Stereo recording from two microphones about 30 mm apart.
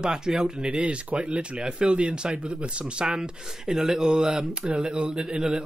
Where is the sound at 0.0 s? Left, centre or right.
Right.